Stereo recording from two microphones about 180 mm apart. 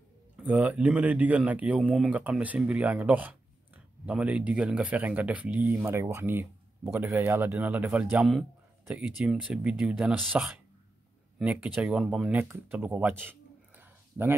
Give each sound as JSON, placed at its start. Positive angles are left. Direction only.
{"t": 0.4, "sound": "speech", "side_deg": -10}